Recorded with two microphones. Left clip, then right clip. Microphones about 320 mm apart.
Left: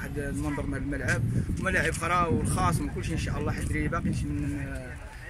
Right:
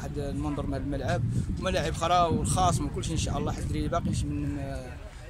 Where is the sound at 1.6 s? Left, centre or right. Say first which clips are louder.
Left 1 dB; centre.